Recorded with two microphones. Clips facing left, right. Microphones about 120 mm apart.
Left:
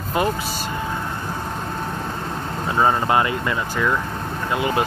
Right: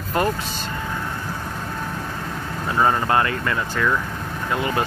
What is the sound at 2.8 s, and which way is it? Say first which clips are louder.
Speech: left 1 dB; 15° left (ahead or behind).